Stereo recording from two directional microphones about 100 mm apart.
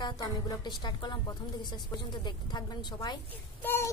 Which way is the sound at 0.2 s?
40° left (ahead or behind).